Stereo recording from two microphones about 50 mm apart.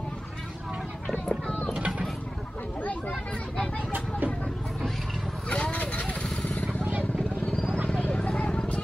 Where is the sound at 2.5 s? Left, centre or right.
Left; by 4.8 s centre.